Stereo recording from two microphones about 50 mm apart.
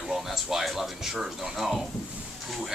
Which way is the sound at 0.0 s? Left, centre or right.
Centre.